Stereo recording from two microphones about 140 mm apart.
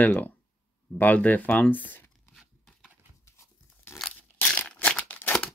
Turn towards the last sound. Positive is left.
turn(degrees=10)  # may be behind; listen again after turning